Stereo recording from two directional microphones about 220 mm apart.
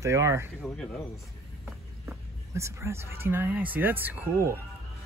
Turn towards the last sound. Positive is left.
turn(degrees=-10)  # may be behind; listen again after turning